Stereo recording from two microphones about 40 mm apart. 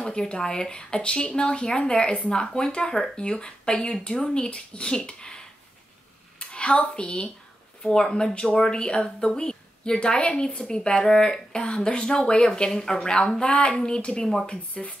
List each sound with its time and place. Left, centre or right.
0.0 s a woman's voice: centre
6.4 s a sound: left
7.0 s a woman's voice: left